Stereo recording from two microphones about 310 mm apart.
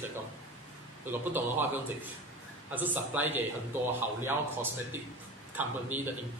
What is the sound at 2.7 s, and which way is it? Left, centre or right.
A man's voice, centre.